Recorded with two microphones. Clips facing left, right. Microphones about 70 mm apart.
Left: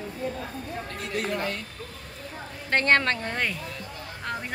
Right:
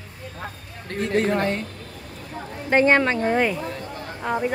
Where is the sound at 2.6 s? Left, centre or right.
Centre.